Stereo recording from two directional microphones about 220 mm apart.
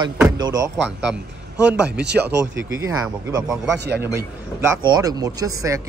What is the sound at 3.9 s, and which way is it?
Speech, 45° right (ahead or behind).